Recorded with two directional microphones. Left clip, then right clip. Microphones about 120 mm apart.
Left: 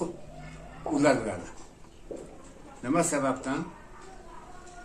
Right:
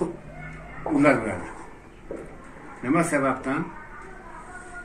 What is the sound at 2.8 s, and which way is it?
Speech, 25° left (ahead or behind).